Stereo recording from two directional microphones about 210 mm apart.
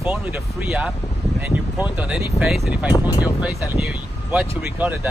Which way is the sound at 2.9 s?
15° left (ahead or behind).